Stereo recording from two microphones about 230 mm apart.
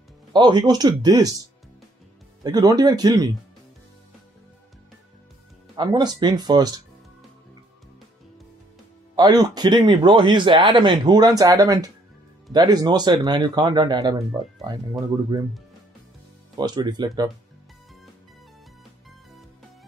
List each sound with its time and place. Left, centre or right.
0.3 s speech: centre
2.4 s speech: centre
5.8 s speech: centre
9.1 s speech: centre
16.5 s speech: centre